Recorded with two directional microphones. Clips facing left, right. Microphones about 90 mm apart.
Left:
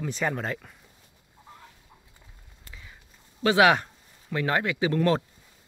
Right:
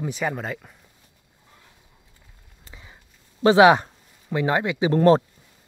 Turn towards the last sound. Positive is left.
turn(degrees=-35)  # may be behind; listen again after turning